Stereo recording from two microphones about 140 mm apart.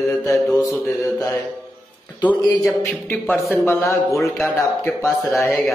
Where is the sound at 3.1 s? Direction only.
15° left (ahead or behind).